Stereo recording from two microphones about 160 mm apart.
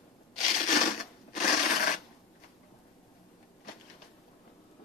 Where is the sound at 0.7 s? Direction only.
55° left (ahead or behind).